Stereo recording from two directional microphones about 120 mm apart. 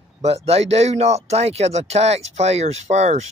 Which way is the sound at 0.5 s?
60° right (ahead or behind).